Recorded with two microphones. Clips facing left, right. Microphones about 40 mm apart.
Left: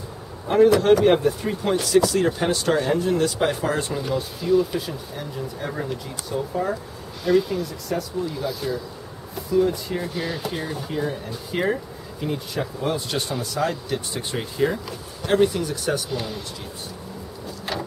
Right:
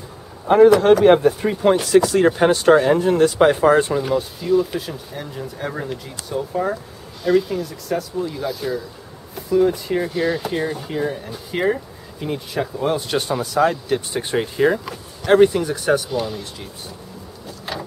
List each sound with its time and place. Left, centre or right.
0.7 s speech: centre
1.0 s speech: centre
3.9 s speech: centre
16.1 s speech: centre
17.7 s ratchet: centre